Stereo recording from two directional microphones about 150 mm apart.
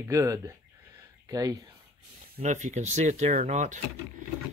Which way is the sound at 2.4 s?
55° right (ahead or behind).